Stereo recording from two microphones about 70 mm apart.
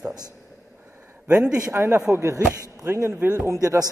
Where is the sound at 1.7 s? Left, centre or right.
Right.